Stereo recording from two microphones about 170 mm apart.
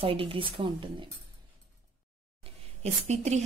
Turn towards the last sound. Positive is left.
turn(degrees=-40)  # may be behind; listen again after turning